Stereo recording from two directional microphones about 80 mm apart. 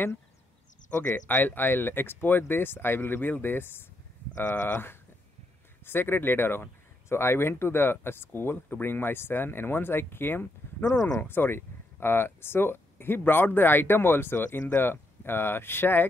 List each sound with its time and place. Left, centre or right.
1.2 s speech: left
10.8 s speech: left
11.1 s speech: left